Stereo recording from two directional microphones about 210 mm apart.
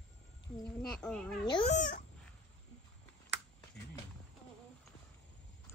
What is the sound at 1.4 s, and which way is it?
Speech, 20° left (ahead or behind).